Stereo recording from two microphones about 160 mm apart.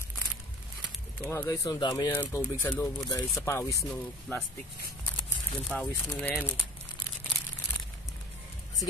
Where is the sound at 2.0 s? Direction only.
10° left (ahead or behind).